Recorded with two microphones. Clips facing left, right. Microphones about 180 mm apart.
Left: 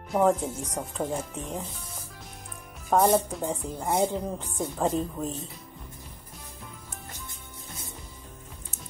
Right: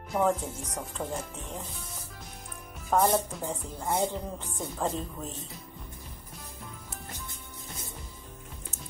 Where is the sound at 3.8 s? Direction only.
25° left (ahead or behind).